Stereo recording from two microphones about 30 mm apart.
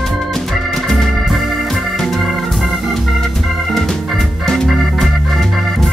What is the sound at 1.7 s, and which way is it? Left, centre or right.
Organ, centre.